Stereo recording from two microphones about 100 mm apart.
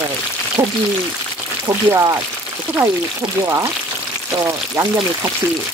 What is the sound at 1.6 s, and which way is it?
Speech, 35° right (ahead or behind).